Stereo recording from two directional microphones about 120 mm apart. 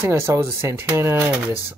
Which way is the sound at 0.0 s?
20° right (ahead or behind).